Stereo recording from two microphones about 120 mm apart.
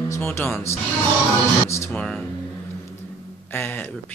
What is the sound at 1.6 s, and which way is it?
Speech, 20° left (ahead or behind).